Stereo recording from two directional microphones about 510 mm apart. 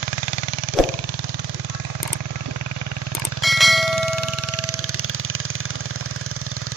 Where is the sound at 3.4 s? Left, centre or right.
Centre.